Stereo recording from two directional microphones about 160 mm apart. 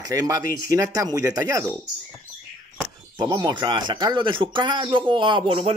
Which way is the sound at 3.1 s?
25° right (ahead or behind).